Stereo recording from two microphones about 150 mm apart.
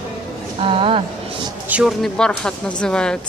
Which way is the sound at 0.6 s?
40° right (ahead or behind).